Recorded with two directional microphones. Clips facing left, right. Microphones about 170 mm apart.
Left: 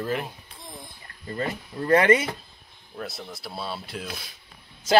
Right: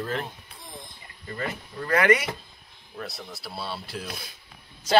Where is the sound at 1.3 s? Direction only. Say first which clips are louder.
Left 3 dB; 30° left (ahead or behind).